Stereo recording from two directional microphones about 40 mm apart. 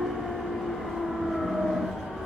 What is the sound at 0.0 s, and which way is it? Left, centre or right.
Train, centre.